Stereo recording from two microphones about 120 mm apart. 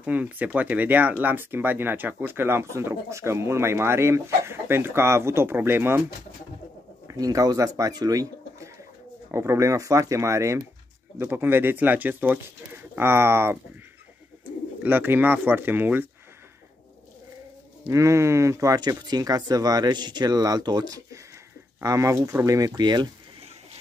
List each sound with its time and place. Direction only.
0.0 s speech: 10° right (ahead or behind)
7.1 s speech: 30° right (ahead or behind)
14.8 s speech: 15° right (ahead or behind)
17.8 s speech: 25° right (ahead or behind)